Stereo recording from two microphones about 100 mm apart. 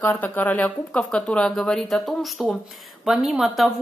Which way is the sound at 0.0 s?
20° left (ahead or behind).